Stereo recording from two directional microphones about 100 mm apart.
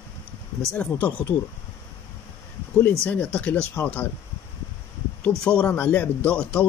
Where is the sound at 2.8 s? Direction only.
20° left (ahead or behind).